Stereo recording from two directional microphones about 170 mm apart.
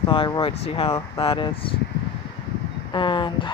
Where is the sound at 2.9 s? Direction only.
25° left (ahead or behind).